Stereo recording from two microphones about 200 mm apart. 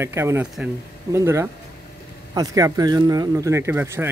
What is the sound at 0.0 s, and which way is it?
Speech, 15° right (ahead or behind).